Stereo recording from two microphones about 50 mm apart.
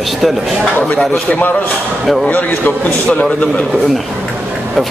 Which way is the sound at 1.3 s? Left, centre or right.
Left.